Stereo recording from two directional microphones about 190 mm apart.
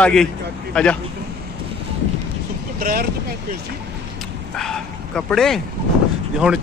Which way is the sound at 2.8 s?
50° right (ahead or behind).